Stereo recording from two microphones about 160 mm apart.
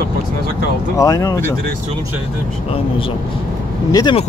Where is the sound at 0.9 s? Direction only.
20° left (ahead or behind).